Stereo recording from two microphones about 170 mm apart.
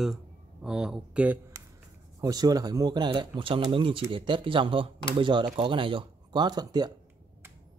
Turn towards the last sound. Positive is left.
turn(degrees=-25)  # may be behind; listen again after turning